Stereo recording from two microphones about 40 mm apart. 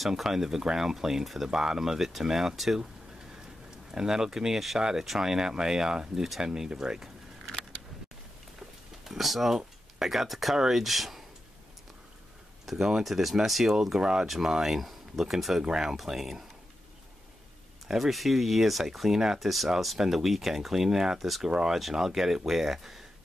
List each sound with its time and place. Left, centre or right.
0.1 s speech: centre
1.5 s speech: centre
3.9 s speech: centre
9.0 s speech: centre
12.6 s speech: centre
17.8 s speech: centre
21.7 s speech: centre